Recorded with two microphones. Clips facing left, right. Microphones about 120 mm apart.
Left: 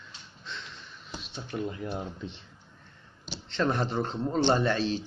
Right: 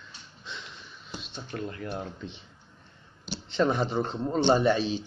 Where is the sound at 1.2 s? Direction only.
Centre (ahead or behind).